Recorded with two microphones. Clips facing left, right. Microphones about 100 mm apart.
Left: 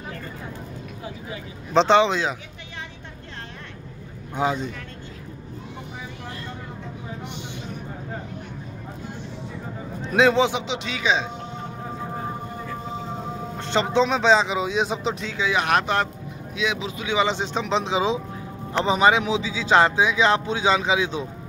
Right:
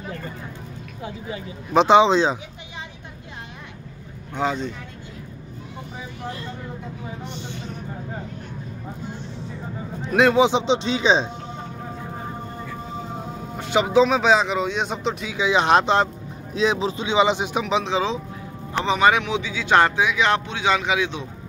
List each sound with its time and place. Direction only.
1.7 s speech: 10° right (ahead or behind)
4.3 s speech: 10° left (ahead or behind)
10.0 s a man's voice: 5° right (ahead or behind)
10.4 s speech: 30° right (ahead or behind)
13.6 s speech: 5° right (ahead or behind)
15.2 s speech: 20° right (ahead or behind)
16.5 s speech: 35° right (ahead or behind); by 17.8 s 10° right (ahead or behind)
17.8 s speech: 15° left (ahead or behind); by 21.3 s 30° left (ahead or behind)